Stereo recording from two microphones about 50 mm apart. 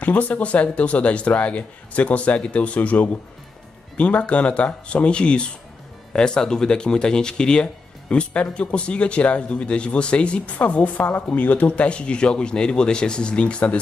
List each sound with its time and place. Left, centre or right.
0.0 s speech: left